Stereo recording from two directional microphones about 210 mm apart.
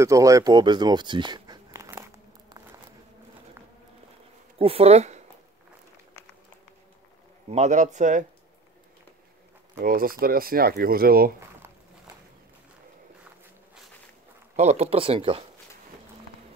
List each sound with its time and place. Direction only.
0.0 s speech: 15° right (ahead or behind)
4.6 s speech: 25° right (ahead or behind)
7.5 s speech: 35° right (ahead or behind)
9.8 s speech: 45° right (ahead or behind)
14.5 s speech: 30° right (ahead or behind)